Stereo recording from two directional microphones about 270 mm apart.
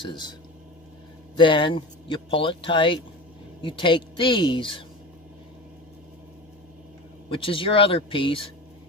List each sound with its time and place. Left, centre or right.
0.0 s speech: centre
7.2 s speech: centre